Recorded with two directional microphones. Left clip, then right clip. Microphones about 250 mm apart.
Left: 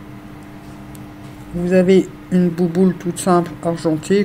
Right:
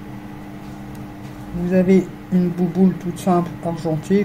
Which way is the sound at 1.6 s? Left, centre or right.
Left.